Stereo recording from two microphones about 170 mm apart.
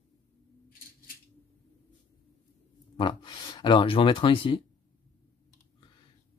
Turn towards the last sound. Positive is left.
turn(degrees=30)  # may be behind; listen again after turning